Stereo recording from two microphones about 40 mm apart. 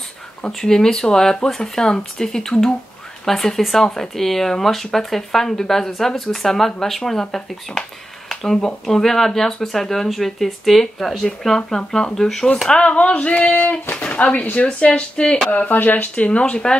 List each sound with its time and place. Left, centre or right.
0.5 s speech: centre
8.3 s a sound: centre
8.8 s speech: centre
11.4 s speech: centre
12.8 s a sound: left
15.1 s speech: centre
15.5 s speech: left
16.2 s speech: left